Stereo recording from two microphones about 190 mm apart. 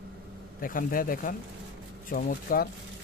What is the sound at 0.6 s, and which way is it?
Speech, 45° left (ahead or behind).